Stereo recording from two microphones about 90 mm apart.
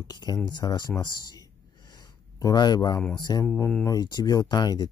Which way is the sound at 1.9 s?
45° left (ahead or behind).